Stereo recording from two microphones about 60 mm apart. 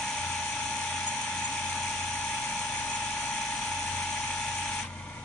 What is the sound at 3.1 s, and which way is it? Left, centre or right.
Vehicle, centre.